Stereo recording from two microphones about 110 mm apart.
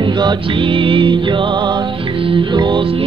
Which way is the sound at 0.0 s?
45° right (ahead or behind).